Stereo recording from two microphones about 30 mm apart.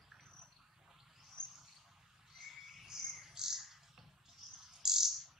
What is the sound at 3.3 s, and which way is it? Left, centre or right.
Bird, centre.